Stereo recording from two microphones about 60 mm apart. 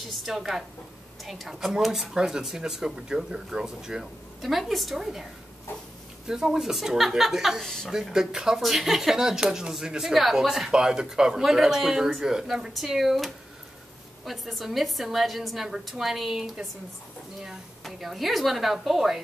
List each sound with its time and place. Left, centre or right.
0.1 s a woman's voice: centre
7.6 s speech: centre
7.9 s a woman's voice: centre
17.8 s a woman's voice: centre